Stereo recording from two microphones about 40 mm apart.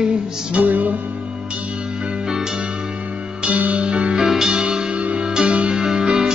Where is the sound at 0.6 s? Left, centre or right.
Right.